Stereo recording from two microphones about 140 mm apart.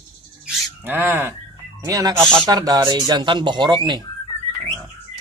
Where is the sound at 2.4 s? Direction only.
25° right (ahead or behind).